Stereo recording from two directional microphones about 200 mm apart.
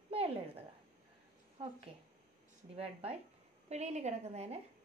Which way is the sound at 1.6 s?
25° right (ahead or behind).